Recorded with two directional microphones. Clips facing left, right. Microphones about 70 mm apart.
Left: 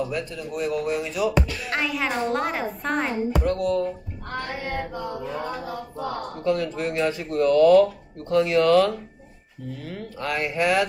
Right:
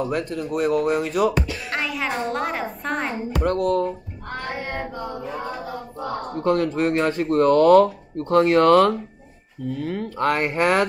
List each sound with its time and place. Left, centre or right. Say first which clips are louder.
0.0 s speech: right 4 dB; right
1.7 s a woman's voice: even; centre
3.3 s speech: right 4 dB; right
6.4 s speech: right 4 dB; right